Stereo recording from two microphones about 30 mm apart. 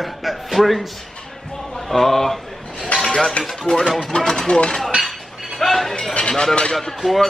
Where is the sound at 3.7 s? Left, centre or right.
Left.